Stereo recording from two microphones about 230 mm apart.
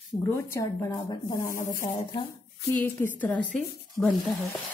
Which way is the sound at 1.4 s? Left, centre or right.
Left.